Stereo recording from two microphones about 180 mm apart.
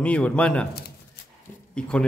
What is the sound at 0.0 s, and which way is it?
Speech, 5° left (ahead or behind).